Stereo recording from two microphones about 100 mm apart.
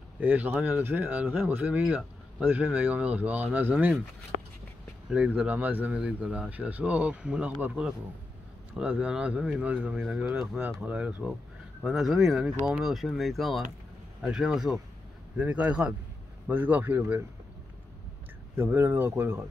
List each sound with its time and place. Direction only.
0.2 s speech: 15° right (ahead or behind)
5.1 s speech: 10° right (ahead or behind)
9.0 s speech: 10° right (ahead or behind)
15.3 s speech: 15° right (ahead or behind)
18.6 s speech: 25° right (ahead or behind)